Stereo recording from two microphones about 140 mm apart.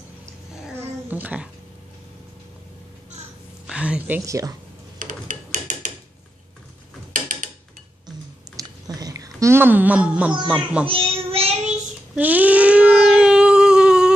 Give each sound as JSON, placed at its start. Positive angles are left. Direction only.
{"t": 0.7, "sound": "cat", "side_deg": -10}
{"t": 3.6, "sound": "a woman's voice", "side_deg": -5}
{"t": 4.2, "sound": "speech", "side_deg": -25}
{"t": 4.9, "sound": "a sound", "side_deg": -70}
{"t": 7.1, "sound": "drawer open or close", "side_deg": -65}
{"t": 8.5, "sound": "a sound", "side_deg": -25}
{"t": 10.5, "sound": "a child's voice", "side_deg": -10}
{"t": 10.9, "sound": "child singing", "side_deg": -40}
{"t": 12.2, "sound": "a sound", "side_deg": -10}